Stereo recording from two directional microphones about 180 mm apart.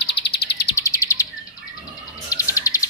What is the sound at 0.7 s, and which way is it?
Bird, 15° left (ahead or behind).